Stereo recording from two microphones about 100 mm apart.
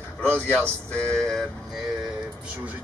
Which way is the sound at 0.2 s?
15° left (ahead or behind).